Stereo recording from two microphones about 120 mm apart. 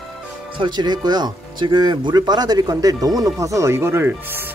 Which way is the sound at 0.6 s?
40° right (ahead or behind).